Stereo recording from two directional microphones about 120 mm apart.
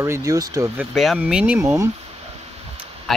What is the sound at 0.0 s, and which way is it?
Speech, 25° right (ahead or behind).